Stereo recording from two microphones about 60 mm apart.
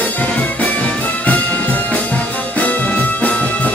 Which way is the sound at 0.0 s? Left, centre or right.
Left.